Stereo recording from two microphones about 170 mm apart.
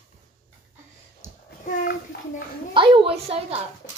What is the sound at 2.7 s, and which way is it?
Speech, 30° right (ahead or behind).